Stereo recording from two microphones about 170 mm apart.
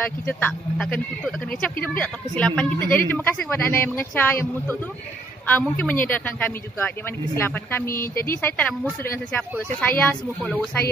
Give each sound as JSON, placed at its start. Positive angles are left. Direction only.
{"t": 0.3, "sound": "speech", "side_deg": 10}